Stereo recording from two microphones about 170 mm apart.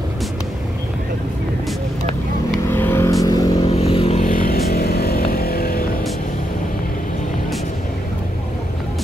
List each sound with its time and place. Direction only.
2.7 s vehicle: 15° left (ahead or behind)
3.6 s vehicle: 35° left (ahead or behind)
4.2 s motorcycle: 55° left (ahead or behind)